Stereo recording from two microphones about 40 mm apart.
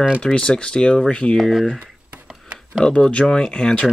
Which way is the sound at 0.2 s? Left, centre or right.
Left.